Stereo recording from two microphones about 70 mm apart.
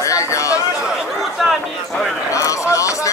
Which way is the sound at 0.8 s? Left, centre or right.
Centre.